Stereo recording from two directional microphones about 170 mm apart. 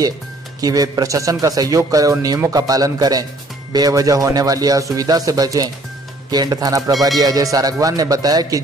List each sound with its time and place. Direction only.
0.6 s a man's voice: 20° right (ahead or behind)